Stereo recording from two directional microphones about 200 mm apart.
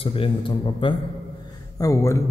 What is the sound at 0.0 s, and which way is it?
A man's voice, 25° left (ahead or behind).